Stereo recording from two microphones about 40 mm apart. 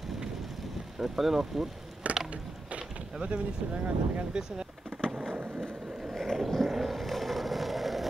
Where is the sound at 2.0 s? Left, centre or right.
Right.